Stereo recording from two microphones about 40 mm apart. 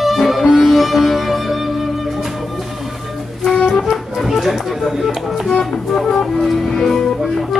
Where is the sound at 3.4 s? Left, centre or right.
Centre.